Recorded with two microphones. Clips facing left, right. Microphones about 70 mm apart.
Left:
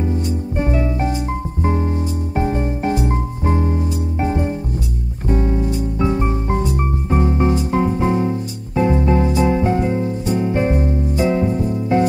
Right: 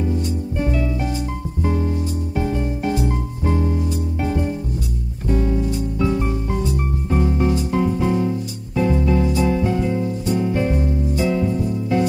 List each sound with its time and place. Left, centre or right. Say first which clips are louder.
0.0 s music: left 1 dB; left